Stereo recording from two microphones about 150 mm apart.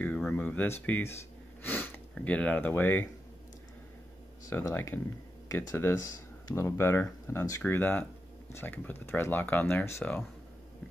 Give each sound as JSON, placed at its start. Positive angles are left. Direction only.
{"t": 0.3, "sound": "speech", "side_deg": 10}
{"t": 4.5, "sound": "speech", "side_deg": 20}